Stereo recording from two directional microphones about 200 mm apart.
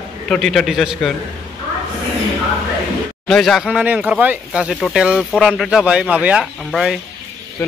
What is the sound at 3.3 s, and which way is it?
Speech, centre (ahead or behind).